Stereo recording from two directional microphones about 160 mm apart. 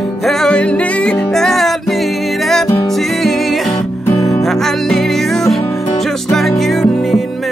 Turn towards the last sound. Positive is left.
turn(degrees=0)  # may be behind; listen again after turning